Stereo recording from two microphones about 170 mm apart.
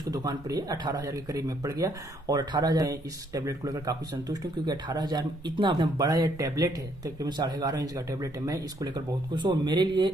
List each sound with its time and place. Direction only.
0.0 s speech: 20° right (ahead or behind)